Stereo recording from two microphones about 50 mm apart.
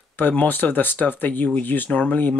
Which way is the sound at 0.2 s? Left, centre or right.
Left.